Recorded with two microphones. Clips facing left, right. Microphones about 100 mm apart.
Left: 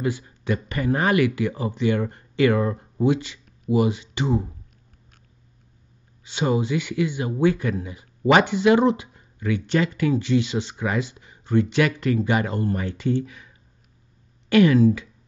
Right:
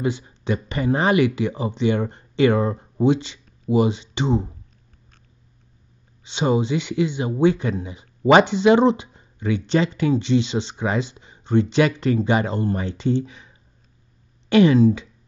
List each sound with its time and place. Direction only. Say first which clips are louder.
0.0 s speech: right 2 dB; 25° right (ahead or behind)
6.2 s speech: right 2 dB; 25° right (ahead or behind)